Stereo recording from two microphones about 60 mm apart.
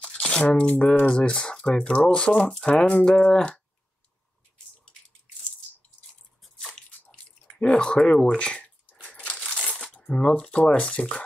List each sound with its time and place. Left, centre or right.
0.4 s speech: left
6.4 s squish: centre
7.1 s drip: centre
8.2 s speech: centre
9.1 s crushing: left
9.4 s speech: centre